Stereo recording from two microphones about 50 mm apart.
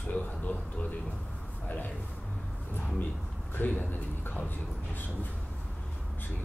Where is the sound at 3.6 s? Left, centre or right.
Left.